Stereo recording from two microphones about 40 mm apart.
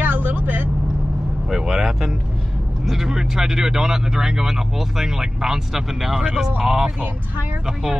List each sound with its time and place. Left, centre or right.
0.0 s vehicle: right
1.5 s vehicle: centre
2.8 s speech: centre